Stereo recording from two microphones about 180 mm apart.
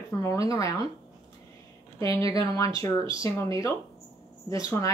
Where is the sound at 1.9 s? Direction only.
20° left (ahead or behind).